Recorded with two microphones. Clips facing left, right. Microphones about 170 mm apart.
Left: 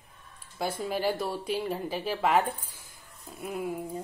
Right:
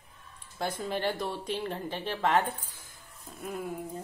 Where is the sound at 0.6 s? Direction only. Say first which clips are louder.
Left 2 dB; 10° left (ahead or behind).